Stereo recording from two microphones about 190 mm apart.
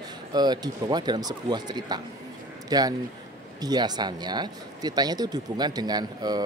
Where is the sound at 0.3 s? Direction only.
20° right (ahead or behind).